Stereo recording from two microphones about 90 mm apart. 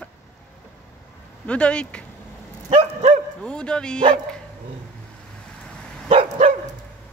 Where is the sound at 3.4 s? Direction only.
10° left (ahead or behind).